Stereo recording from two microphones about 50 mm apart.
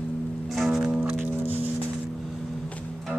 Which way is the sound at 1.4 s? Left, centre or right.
Right.